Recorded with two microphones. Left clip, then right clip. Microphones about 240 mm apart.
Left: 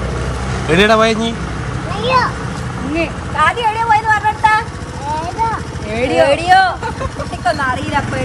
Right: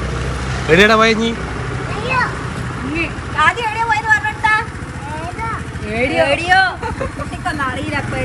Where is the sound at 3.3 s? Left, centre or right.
Left.